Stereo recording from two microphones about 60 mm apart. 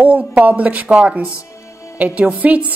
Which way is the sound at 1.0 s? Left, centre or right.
Centre.